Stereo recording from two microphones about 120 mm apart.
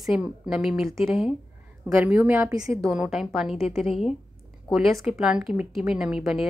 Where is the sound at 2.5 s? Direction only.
30° right (ahead or behind).